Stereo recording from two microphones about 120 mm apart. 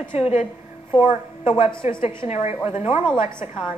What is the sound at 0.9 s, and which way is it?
A woman's voice, 45° left (ahead or behind).